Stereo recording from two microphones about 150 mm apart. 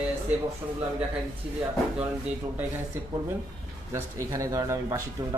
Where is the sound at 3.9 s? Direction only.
20° right (ahead or behind).